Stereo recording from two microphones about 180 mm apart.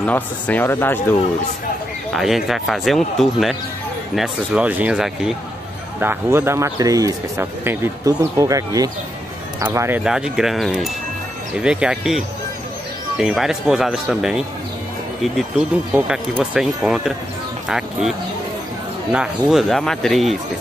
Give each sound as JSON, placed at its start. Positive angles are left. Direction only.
{"t": 0.0, "sound": "speech", "side_deg": 10}
{"t": 2.1, "sound": "speech", "side_deg": 0}
{"t": 13.2, "sound": "speech", "side_deg": 0}
{"t": 19.1, "sound": "speech", "side_deg": 0}